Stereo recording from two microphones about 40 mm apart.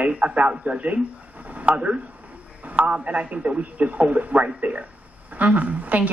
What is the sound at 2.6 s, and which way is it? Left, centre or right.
Music, right.